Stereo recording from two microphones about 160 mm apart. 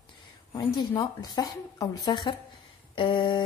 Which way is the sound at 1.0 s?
25° left (ahead or behind).